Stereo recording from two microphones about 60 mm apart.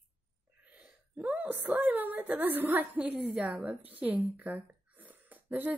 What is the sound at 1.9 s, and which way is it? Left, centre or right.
A woman's voice, right.